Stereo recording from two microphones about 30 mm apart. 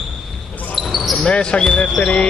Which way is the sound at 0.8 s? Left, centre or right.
Centre.